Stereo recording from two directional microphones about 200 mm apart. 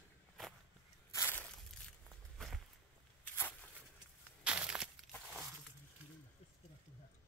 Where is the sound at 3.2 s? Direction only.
10° left (ahead or behind).